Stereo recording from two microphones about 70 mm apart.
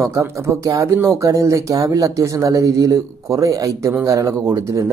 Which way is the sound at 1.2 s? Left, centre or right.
Right.